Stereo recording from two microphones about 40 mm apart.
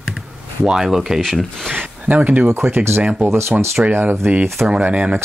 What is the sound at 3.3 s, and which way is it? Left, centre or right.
Speech, right.